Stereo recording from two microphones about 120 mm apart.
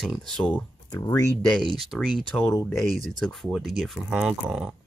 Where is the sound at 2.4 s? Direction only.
20° left (ahead or behind).